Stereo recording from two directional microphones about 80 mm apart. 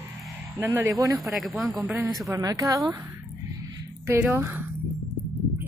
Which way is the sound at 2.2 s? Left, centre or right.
Right.